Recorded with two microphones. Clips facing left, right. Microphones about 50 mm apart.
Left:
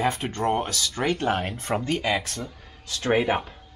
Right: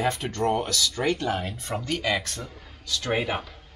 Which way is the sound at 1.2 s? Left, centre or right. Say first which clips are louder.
Left 3 dB; left.